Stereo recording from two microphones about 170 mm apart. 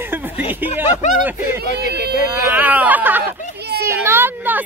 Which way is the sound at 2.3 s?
10° right (ahead or behind).